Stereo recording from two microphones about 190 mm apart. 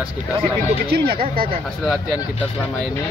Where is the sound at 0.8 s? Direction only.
55° right (ahead or behind).